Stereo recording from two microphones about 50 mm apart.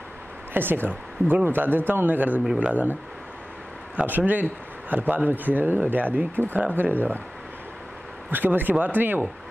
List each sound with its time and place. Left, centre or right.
0.5 s speech: right
8.3 s speech: right